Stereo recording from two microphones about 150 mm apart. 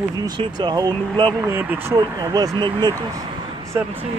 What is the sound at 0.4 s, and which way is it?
Speech, 30° right (ahead or behind).